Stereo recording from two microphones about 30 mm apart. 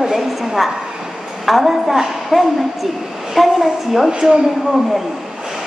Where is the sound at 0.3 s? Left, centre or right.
Centre.